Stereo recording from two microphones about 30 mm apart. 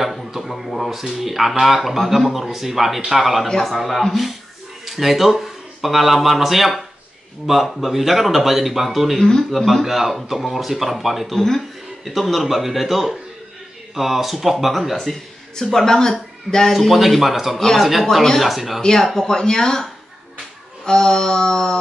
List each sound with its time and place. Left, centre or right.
0.0 s a sound: centre
0.7 s speech: centre
11.3 s speech: centre
12.0 s speech: centre
15.5 s speech: centre
16.7 s speech: centre
18.8 s a sound: left